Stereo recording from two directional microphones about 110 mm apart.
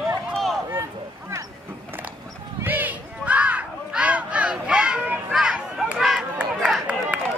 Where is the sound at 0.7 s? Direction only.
25° right (ahead or behind).